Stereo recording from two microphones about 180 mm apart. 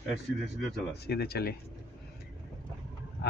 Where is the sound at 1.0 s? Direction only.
65° left (ahead or behind).